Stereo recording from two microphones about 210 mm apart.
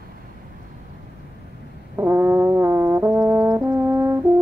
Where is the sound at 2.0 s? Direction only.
10° right (ahead or behind).